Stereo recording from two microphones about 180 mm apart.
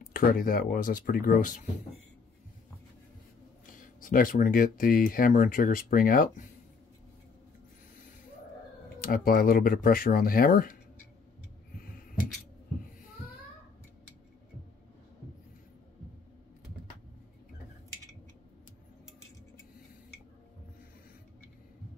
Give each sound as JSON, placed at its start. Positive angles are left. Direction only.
{"t": 0.0, "sound": "speech", "side_deg": 50}
{"t": 3.8, "sound": "speech", "side_deg": 50}
{"t": 9.0, "sound": "speech", "side_deg": 55}